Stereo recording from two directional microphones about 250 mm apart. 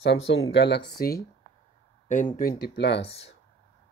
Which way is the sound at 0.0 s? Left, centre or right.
Left.